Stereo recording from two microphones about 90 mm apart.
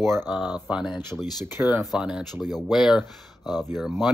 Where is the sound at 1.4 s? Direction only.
25° right (ahead or behind).